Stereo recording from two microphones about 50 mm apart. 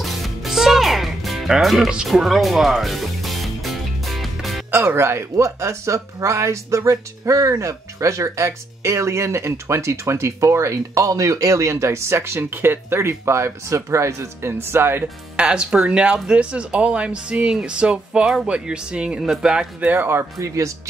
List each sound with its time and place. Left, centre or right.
0.0 s music: centre
1.6 s speech: centre
2.0 s music: centre
4.8 s speech: right
14.6 s speech: right
15.3 s speech: centre
20.0 s speech: right
20.3 s speech: right